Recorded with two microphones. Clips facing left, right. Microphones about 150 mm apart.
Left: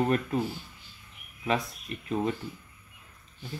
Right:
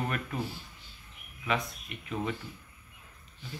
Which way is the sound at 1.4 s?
35° left (ahead or behind).